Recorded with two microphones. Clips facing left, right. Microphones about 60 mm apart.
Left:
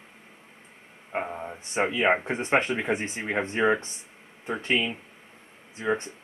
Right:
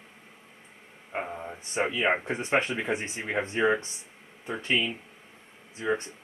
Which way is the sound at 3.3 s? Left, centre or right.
Centre.